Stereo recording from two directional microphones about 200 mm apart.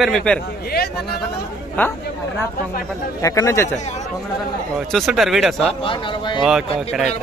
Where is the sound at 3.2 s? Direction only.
15° left (ahead or behind).